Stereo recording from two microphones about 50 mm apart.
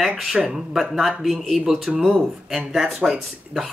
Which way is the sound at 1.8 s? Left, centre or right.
Centre.